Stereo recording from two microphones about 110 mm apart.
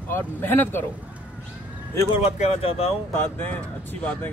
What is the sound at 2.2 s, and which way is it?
Speech, 70° left (ahead or behind).